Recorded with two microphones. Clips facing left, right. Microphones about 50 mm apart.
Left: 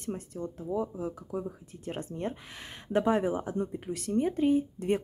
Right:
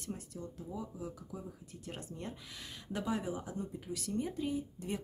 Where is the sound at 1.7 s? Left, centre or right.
Left.